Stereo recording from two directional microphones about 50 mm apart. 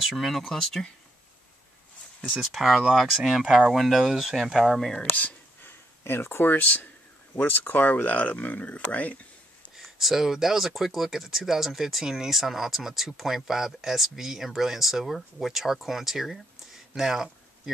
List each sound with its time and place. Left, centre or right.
0.0 s speech: centre
2.2 s speech: centre
5.6 s a sound: left
6.4 s speech: left
9.8 s speech: centre